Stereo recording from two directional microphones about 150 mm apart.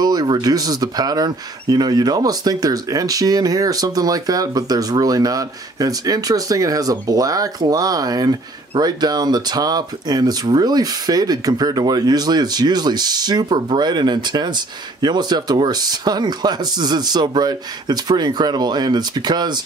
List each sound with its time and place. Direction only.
0.0 s speech: 25° right (ahead or behind)